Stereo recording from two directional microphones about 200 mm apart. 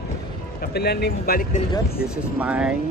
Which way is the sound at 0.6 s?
50° left (ahead or behind).